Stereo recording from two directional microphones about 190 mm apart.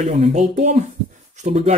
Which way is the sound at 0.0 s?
35° right (ahead or behind).